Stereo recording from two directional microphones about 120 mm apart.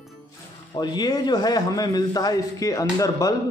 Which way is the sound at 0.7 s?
35° left (ahead or behind).